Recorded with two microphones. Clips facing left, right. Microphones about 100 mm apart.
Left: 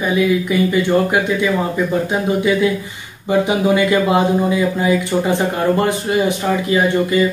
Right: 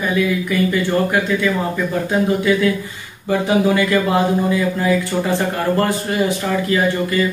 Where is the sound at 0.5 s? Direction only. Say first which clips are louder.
Left 1 dB; 20° left (ahead or behind).